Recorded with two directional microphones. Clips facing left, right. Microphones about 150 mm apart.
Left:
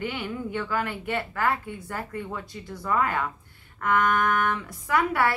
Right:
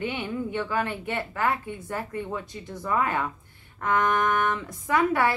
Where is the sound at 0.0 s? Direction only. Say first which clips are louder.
Right 1 dB; 20° right (ahead or behind).